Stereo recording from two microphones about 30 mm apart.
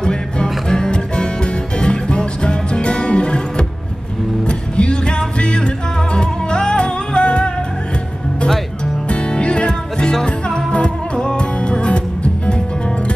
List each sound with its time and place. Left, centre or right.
0.0 s music: left
0.9 s music: left
9.1 s music: left